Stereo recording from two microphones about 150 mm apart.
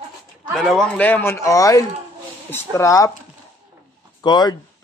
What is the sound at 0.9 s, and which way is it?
Speech, 10° left (ahead or behind).